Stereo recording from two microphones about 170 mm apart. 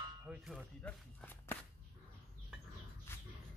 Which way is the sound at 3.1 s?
15° left (ahead or behind).